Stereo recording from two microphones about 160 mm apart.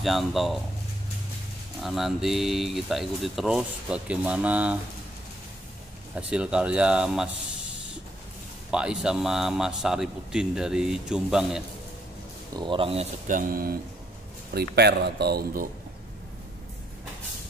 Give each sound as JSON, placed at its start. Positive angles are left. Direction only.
{"t": 0.0, "sound": "speech", "side_deg": 0}
{"t": 1.8, "sound": "speech", "side_deg": 0}
{"t": 6.1, "sound": "speech", "side_deg": -5}
{"t": 8.6, "sound": "speech", "side_deg": -5}
{"t": 12.5, "sound": "speech", "side_deg": -30}
{"t": 13.3, "sound": "speech", "side_deg": -60}
{"t": 14.5, "sound": "speech", "side_deg": -85}